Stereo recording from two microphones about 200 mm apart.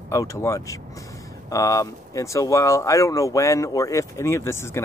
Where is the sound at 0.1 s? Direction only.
15° left (ahead or behind).